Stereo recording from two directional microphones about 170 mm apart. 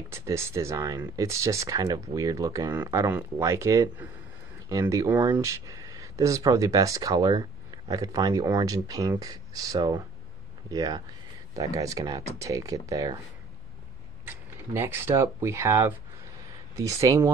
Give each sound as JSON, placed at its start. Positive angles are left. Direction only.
{"t": 0.1, "sound": "speech", "side_deg": -15}
{"t": 14.2, "sound": "speech", "side_deg": -15}